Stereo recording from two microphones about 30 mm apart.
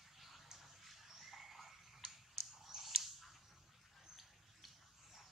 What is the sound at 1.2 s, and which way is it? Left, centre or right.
Frog, centre.